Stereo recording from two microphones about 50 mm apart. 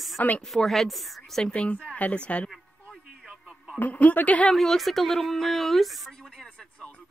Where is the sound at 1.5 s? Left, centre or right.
Left.